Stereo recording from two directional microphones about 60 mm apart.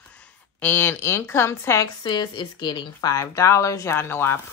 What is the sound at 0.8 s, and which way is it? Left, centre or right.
Speech, left.